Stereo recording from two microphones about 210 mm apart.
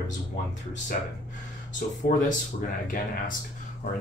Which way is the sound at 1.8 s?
45° left (ahead or behind).